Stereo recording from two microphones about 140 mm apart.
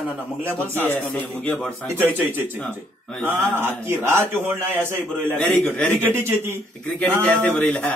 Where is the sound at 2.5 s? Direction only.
10° left (ahead or behind).